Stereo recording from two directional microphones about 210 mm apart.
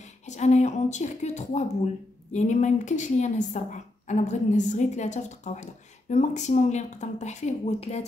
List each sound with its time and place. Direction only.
0.3 s a woman's voice: 35° left (ahead or behind)